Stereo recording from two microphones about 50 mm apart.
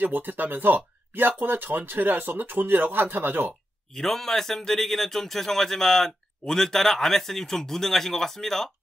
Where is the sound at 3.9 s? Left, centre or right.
Centre.